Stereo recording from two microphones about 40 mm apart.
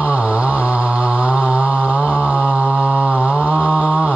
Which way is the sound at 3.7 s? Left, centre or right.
Right.